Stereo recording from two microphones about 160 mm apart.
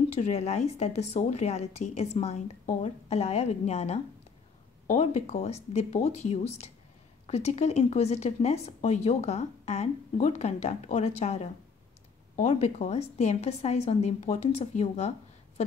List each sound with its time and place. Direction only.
0.1 s speech: 45° left (ahead or behind)